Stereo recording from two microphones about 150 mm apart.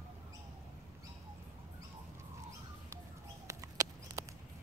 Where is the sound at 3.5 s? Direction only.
25° right (ahead or behind).